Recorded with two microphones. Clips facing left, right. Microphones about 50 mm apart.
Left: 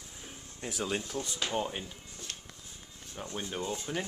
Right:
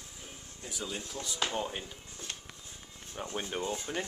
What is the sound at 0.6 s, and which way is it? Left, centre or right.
Speech, left.